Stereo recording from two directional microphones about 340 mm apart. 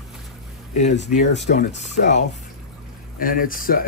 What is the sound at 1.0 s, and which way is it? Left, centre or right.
Speech, left.